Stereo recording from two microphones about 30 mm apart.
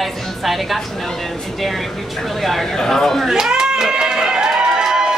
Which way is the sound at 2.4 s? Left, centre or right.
Centre.